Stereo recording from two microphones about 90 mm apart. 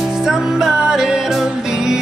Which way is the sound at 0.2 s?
5° right (ahead or behind).